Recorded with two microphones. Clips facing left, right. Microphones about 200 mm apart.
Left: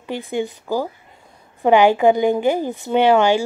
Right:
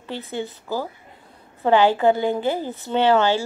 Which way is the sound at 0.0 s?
15° left (ahead or behind).